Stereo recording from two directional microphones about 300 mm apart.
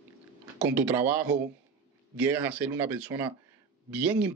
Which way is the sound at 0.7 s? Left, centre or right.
Centre.